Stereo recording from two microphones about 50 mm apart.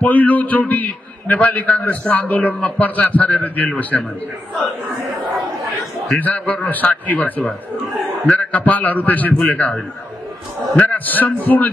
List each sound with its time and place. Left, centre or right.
0.0 s a man's voice: left
6.1 s a man's voice: left
10.8 s a man's voice: left